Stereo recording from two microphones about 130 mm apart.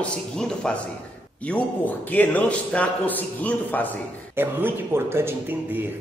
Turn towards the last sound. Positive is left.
turn(degrees=-20)  # may be behind; listen again after turning